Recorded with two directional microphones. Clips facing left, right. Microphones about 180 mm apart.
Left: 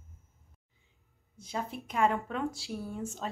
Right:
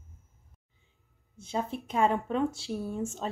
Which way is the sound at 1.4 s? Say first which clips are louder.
Right 4 dB; 25° right (ahead or behind).